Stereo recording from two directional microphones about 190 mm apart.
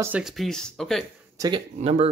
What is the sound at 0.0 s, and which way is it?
Speech, 5° right (ahead or behind).